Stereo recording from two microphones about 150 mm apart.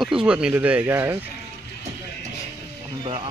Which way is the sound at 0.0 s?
5° right (ahead or behind).